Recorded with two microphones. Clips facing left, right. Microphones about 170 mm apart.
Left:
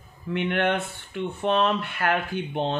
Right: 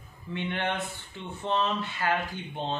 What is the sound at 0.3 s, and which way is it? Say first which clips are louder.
Speech: left 7 dB; 65° left (ahead or behind).